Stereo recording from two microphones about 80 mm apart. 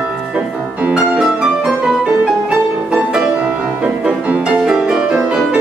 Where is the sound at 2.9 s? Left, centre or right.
Centre.